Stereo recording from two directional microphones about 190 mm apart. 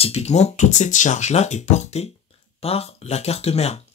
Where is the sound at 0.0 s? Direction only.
35° left (ahead or behind).